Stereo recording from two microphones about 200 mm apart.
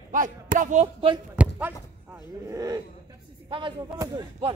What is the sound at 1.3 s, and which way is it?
Speech, 5° right (ahead or behind).